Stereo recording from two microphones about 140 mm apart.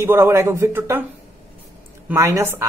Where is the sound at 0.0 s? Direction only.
20° right (ahead or behind).